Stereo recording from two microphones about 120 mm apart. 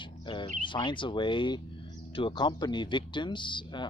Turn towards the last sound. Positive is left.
turn(degrees=40)  # may be behind; listen again after turning